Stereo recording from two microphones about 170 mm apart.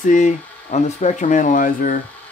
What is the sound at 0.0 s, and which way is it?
Speech, 45° left (ahead or behind).